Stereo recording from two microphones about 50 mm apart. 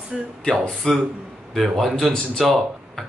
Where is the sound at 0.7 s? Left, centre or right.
Centre.